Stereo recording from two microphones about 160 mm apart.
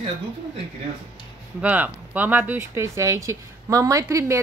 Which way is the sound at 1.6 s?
10° right (ahead or behind).